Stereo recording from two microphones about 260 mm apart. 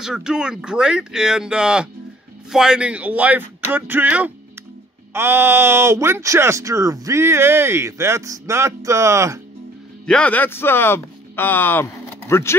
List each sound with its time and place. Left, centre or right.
0.0 s speech: centre
10.0 s speech: centre